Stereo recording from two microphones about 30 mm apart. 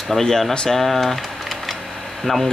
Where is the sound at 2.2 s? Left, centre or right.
Centre.